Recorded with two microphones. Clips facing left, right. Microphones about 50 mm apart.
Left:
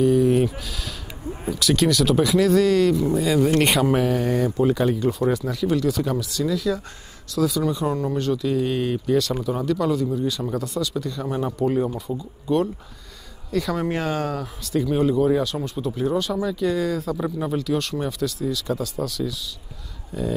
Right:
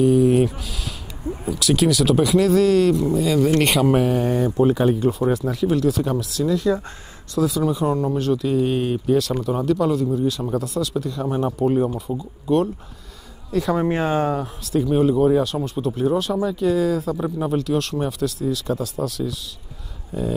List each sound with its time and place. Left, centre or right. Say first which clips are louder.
0.0 s sheep: right 2 dB; centre
1.5 s speech: right 1 dB; centre
11.9 s speech: right 2 dB; centre
13.7 s speech: right 6 dB; right
14.6 s speech: right 2 dB; centre